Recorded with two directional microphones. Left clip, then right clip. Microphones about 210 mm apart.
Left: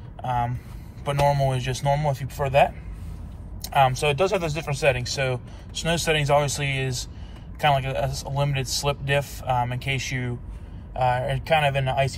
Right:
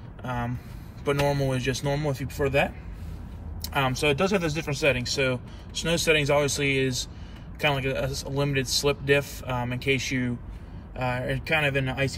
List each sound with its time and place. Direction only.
0.2 s speech: centre (ahead or behind)
3.6 s speech: 10° left (ahead or behind)